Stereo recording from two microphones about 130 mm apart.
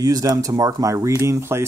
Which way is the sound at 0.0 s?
30° right (ahead or behind).